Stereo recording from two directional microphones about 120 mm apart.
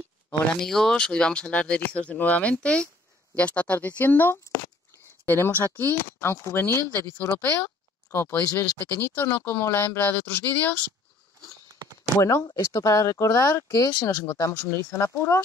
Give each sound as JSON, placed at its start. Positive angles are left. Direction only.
{"t": 0.6, "sound": "speech", "side_deg": 5}
{"t": 12.2, "sound": "speech", "side_deg": 25}